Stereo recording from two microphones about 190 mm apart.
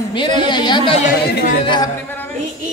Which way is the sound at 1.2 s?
60° left (ahead or behind).